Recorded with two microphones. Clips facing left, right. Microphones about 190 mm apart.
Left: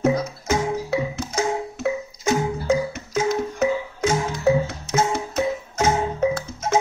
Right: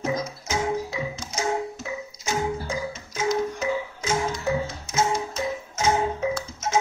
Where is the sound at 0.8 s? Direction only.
65° left (ahead or behind).